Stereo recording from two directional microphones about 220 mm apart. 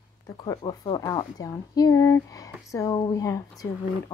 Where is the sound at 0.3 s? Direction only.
15° left (ahead or behind).